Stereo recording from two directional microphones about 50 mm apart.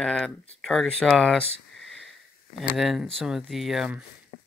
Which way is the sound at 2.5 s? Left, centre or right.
Centre.